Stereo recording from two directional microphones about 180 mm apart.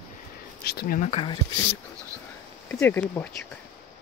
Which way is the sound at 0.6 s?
55° left (ahead or behind).